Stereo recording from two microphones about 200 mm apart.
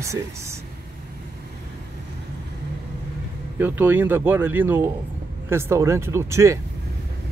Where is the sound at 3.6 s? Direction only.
10° right (ahead or behind).